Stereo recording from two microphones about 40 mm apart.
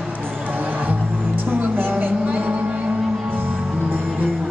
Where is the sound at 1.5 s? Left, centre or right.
Right.